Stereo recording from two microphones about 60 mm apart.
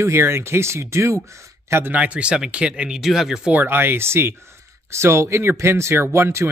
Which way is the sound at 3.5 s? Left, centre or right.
Right.